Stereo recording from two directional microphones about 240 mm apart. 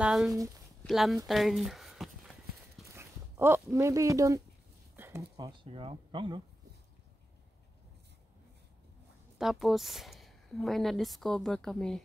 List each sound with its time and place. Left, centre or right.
0.0 s speech: centre
2.9 s a sound: centre
4.9 s speech: centre
9.4 s speech: centre